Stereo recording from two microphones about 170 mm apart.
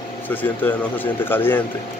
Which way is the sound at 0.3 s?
10° left (ahead or behind).